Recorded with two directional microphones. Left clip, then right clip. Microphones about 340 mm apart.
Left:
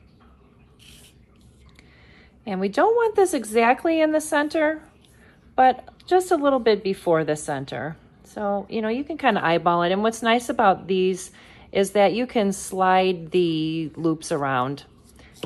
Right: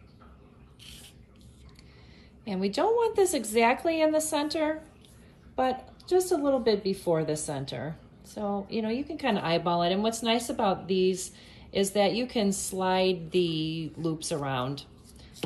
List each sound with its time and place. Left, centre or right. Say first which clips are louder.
2.5 s speech: left 6 dB; centre
6.2 s speech: left 6 dB; centre
6.7 s speech: left 6 dB; centre